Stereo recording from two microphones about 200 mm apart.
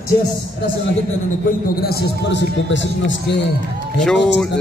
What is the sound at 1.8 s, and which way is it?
A man's voice, 50° left (ahead or behind).